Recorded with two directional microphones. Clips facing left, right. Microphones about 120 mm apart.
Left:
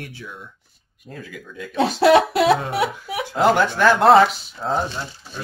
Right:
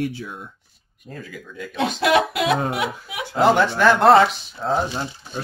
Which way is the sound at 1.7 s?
35° left (ahead or behind).